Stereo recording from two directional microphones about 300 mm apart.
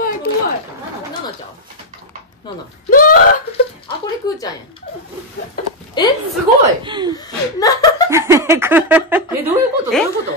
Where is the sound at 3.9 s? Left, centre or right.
Centre.